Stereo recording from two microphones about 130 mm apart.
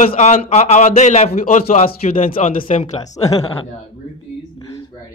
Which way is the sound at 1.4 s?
70° left (ahead or behind).